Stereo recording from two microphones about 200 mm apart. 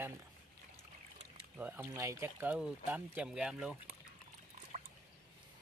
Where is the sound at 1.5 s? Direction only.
10° right (ahead or behind).